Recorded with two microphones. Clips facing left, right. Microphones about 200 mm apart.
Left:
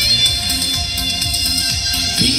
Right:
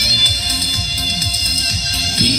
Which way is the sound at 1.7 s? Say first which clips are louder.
Even; 70° left (ahead or behind).